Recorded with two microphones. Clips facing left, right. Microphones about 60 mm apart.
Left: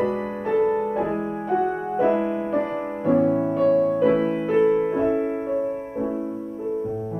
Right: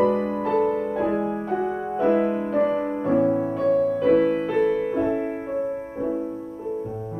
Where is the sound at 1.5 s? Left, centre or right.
Left.